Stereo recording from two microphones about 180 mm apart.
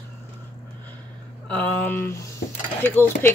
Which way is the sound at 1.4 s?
5° left (ahead or behind).